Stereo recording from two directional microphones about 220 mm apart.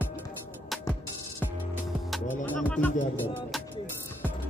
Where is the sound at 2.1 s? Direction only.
10° left (ahead or behind).